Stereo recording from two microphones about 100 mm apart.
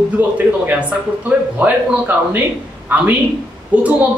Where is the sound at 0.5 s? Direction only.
15° right (ahead or behind).